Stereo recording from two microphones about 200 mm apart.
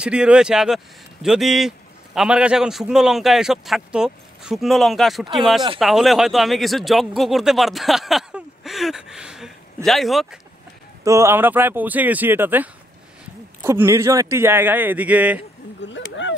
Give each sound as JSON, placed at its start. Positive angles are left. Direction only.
{"t": 0.0, "sound": "speech", "side_deg": -5}
{"t": 11.1, "sound": "a man's voice", "side_deg": -15}
{"t": 15.8, "sound": "speech", "side_deg": 65}